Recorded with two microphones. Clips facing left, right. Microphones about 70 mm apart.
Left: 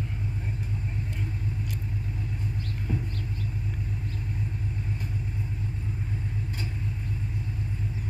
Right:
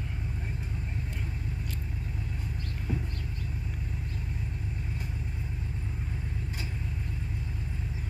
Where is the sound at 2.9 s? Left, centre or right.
Centre.